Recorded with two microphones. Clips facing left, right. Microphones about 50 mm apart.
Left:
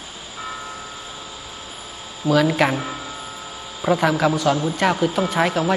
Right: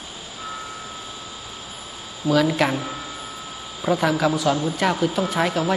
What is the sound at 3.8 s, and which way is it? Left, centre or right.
Speech, centre.